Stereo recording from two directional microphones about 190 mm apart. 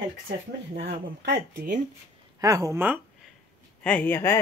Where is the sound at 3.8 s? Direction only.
10° left (ahead or behind).